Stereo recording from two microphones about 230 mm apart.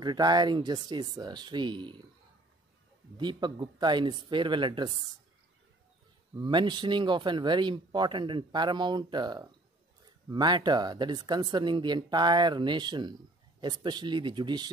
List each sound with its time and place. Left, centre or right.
0.0 s speech: centre
3.2 s speech: centre
6.3 s speech: centre